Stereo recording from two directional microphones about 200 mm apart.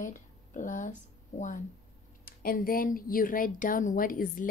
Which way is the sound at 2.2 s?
45° left (ahead or behind).